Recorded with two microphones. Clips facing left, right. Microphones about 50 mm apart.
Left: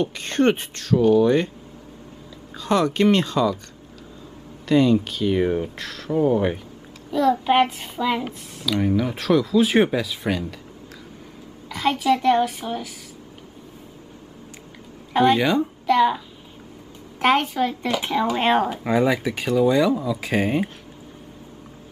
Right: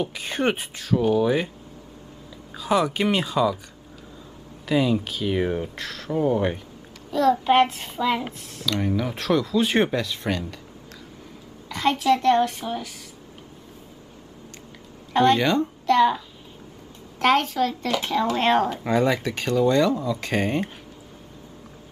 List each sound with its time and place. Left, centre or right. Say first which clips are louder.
0.0 s speech: left 4 dB; centre
2.5 s speech: left 1 dB; centre
4.6 s a child's voice: left 4 dB; centre
11.7 s a child's voice: even; centre
15.1 s a child's voice: left 1 dB; centre
17.2 s speech: left 1 dB; centre